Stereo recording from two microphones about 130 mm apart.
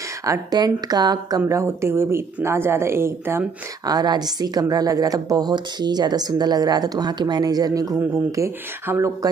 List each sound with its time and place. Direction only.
0.2 s speech: 30° right (ahead or behind)
3.8 s a woman's voice: 30° right (ahead or behind)